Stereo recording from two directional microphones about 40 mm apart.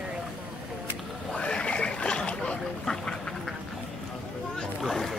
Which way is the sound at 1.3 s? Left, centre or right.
Left.